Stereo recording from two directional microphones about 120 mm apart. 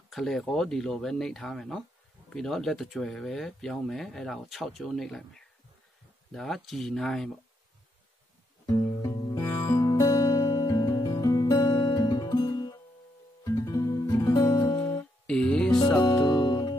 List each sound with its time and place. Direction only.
0.1 s speech: centre (ahead or behind)
8.6 s music: 20° left (ahead or behind)
15.2 s music: 5° left (ahead or behind)
16.3 s music: 40° left (ahead or behind)